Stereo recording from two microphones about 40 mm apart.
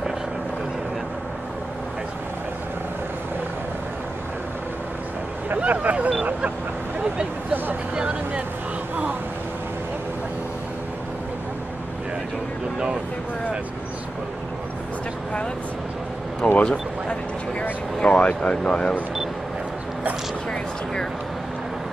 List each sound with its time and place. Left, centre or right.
5.6 s speech: right
7.9 s speech: right
16.4 s speech: centre
18.0 s speech: left